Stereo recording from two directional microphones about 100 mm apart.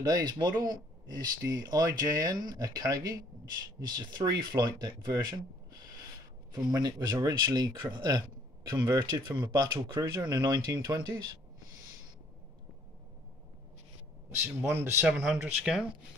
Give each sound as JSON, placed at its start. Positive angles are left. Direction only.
{"t": 0.0, "sound": "speech", "side_deg": -45}
{"t": 6.5, "sound": "speech", "side_deg": -45}
{"t": 14.4, "sound": "a man's voice", "side_deg": -25}
{"t": 15.0, "sound": "speech", "side_deg": -10}